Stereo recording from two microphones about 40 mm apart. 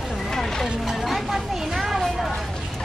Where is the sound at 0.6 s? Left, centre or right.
Centre.